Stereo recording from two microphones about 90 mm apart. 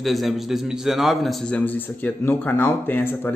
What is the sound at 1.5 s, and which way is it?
A man's voice, 20° left (ahead or behind).